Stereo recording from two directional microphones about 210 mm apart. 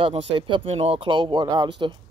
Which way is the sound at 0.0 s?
25° right (ahead or behind).